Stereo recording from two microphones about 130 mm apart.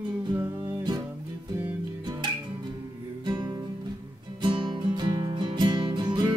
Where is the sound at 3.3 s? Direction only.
30° right (ahead or behind).